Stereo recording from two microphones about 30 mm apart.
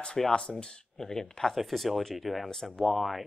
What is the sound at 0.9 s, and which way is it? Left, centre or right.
Speech, centre.